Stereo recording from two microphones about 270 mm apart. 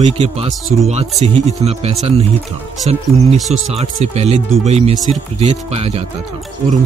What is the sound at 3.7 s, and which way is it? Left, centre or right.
Speech, right.